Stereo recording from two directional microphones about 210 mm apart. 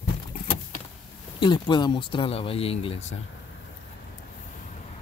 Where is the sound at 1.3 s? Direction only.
20° left (ahead or behind).